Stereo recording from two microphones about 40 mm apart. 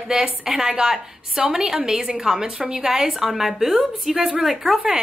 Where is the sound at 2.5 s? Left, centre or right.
Right; by 4.8 s centre.